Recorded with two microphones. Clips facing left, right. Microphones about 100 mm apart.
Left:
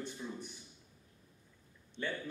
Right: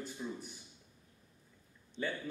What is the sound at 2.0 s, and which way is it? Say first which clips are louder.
Speech: right 2 dB; 5° right (ahead or behind).